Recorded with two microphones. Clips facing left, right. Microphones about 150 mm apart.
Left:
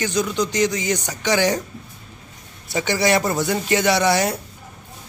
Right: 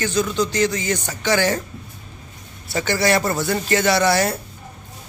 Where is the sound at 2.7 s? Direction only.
15° left (ahead or behind).